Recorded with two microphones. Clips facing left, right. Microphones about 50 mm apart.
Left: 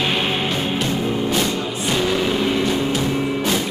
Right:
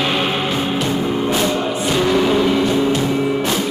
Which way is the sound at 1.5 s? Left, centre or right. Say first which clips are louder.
Right 4 dB; right.